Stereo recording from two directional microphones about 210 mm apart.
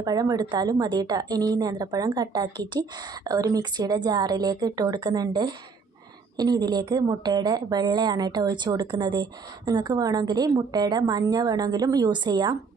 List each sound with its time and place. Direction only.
0.0 s a woman's voice: 20° right (ahead or behind)